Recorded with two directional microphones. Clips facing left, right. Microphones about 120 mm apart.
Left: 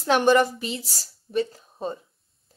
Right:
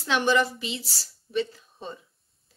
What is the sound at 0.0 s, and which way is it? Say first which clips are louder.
A woman's voice: left 5 dB; 45° left (ahead or behind).